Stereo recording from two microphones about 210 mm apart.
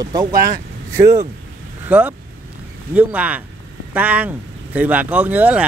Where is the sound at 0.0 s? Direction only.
20° right (ahead or behind).